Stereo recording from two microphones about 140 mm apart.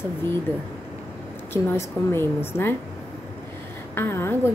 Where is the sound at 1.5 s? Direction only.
15° left (ahead or behind).